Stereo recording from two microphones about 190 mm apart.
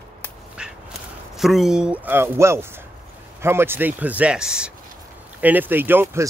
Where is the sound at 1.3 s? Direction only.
Centre (ahead or behind).